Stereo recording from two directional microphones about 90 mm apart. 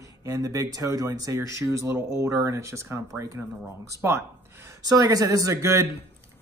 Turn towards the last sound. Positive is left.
turn(degrees=-30)  # may be behind; listen again after turning